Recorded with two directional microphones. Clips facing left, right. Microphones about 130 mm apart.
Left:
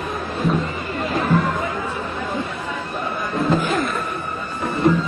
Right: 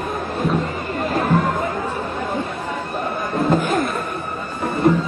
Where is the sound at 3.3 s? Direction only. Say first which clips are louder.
Right 1 dB; 45° right (ahead or behind).